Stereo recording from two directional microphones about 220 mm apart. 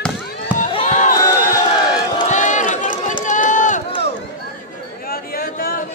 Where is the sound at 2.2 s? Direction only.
35° left (ahead or behind).